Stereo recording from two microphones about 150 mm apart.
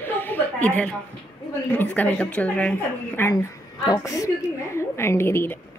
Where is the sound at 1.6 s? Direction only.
10° left (ahead or behind).